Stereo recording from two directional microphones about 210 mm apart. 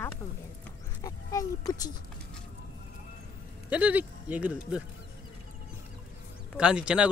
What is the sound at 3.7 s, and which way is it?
Speech, 5° right (ahead or behind).